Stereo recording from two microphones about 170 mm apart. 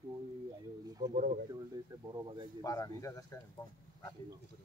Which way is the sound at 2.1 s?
25° right (ahead or behind).